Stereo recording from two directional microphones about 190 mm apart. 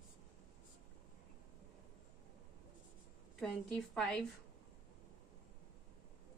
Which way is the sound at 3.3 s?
Centre (ahead or behind).